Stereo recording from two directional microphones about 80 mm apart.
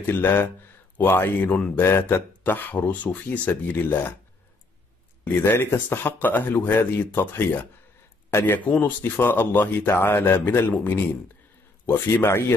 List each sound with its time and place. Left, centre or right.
0.0 s speech: left
5.2 s speech: left